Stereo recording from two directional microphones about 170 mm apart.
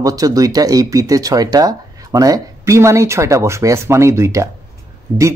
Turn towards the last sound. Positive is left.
turn(degrees=-15)  # may be behind; listen again after turning